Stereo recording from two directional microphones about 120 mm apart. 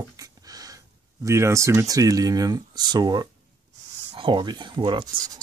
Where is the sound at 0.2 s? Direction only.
30° right (ahead or behind).